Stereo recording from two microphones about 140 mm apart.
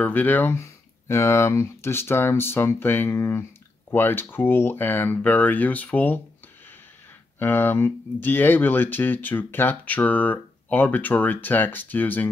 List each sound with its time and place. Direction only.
0.0 s speech: 15° left (ahead or behind)
7.3 s speech: 15° left (ahead or behind)